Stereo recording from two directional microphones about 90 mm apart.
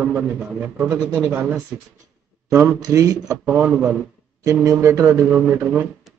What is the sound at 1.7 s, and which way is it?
Speech, 15° right (ahead or behind).